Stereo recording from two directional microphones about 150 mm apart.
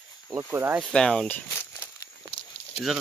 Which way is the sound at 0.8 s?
5° left (ahead or behind).